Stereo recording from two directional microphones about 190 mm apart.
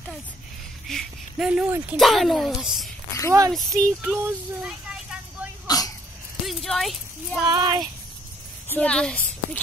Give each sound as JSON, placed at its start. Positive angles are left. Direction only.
{"t": 0.8, "sound": "speech", "side_deg": 0}
{"t": 3.3, "sound": "speech", "side_deg": -15}
{"t": 5.7, "sound": "dog", "side_deg": 20}
{"t": 6.4, "sound": "a sound", "side_deg": 0}
{"t": 7.4, "sound": "child singing", "side_deg": -20}
{"t": 8.7, "sound": "a child's voice", "side_deg": 5}